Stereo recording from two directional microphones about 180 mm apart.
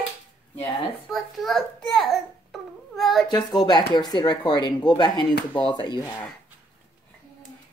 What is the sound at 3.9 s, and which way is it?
Chopping, 25° left (ahead or behind).